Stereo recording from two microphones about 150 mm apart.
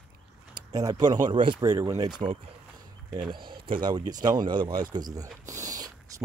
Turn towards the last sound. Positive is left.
turn(degrees=-25)  # may be behind; listen again after turning